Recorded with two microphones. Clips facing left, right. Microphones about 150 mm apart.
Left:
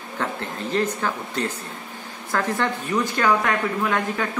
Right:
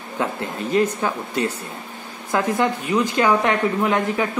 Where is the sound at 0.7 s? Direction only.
10° right (ahead or behind).